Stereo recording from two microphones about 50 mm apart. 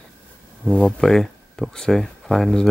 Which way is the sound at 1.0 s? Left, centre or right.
Centre.